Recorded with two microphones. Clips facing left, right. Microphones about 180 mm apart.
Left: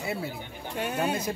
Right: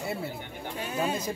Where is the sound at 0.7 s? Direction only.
65° left (ahead or behind).